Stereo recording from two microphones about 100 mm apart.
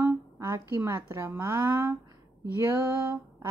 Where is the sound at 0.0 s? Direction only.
25° right (ahead or behind).